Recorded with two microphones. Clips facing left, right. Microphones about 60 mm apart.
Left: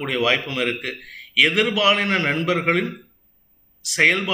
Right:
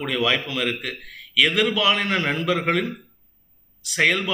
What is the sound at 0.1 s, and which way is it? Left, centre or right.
A man's voice, centre.